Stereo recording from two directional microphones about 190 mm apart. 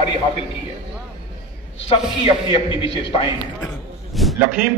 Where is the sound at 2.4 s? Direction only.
25° left (ahead or behind).